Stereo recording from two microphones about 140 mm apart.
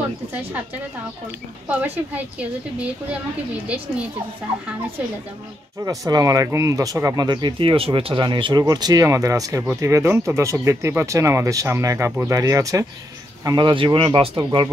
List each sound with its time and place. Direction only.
2.1 s a woman's voice: 10° right (ahead or behind)
5.9 s speech: 25° right (ahead or behind)